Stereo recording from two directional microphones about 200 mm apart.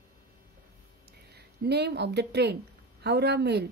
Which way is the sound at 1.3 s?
55° right (ahead or behind).